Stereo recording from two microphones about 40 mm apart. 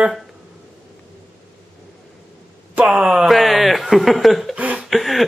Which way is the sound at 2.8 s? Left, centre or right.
Right.